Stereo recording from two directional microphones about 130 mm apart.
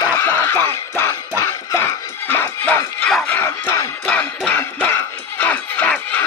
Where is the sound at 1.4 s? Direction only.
20° left (ahead or behind).